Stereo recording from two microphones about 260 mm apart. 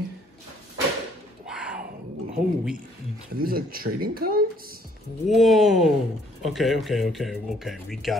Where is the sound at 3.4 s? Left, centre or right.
Right.